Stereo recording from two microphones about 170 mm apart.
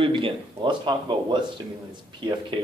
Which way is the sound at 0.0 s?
30° right (ahead or behind).